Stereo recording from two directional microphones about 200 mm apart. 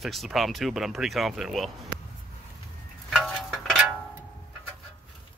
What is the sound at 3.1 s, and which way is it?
Music, 5° left (ahead or behind).